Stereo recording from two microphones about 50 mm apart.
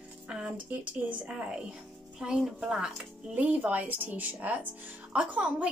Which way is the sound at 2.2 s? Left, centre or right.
Centre.